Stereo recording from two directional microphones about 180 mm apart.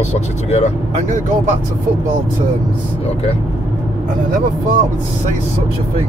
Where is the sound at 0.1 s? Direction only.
35° left (ahead or behind).